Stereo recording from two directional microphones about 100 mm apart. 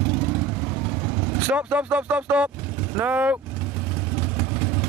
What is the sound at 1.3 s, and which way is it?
Speech, 15° right (ahead or behind).